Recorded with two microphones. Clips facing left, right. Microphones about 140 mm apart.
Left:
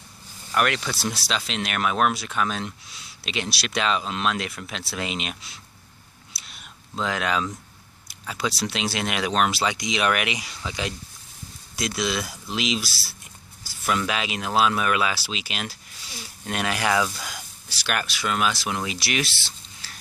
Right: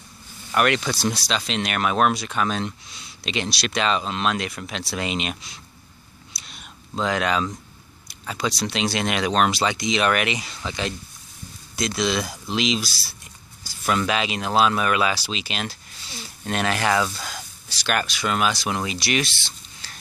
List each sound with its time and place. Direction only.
0.6 s speech: centre (ahead or behind)
6.3 s a sound: 5° left (ahead or behind)
8.1 s speech: 5° left (ahead or behind)